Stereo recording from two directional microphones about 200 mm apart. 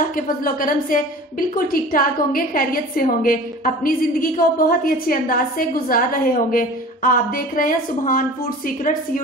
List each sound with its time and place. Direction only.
0.1 s a woman's voice: 45° left (ahead or behind)